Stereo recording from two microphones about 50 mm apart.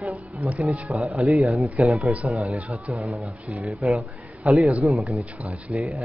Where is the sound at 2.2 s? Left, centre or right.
Centre.